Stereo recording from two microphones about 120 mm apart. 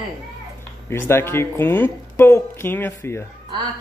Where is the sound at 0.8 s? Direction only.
20° left (ahead or behind).